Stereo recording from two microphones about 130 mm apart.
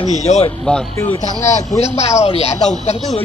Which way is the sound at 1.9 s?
55° left (ahead or behind).